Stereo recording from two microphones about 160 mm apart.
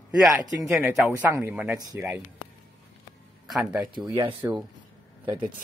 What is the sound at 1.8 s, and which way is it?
Speech, 25° right (ahead or behind).